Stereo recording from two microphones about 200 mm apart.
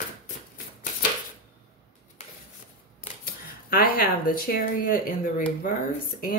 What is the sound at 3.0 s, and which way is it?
Speech, 45° left (ahead or behind).